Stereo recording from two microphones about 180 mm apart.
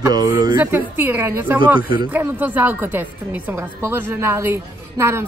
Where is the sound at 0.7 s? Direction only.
10° right (ahead or behind).